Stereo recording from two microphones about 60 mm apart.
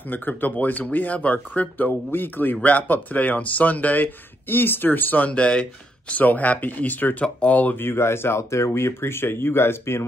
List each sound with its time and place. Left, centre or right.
0.1 s speech: left
6.1 s speech: left
7.8 s speech: left